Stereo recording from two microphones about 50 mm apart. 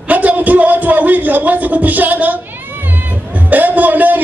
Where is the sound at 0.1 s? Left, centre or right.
Right.